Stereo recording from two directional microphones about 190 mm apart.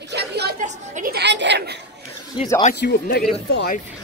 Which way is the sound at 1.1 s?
65° right (ahead or behind).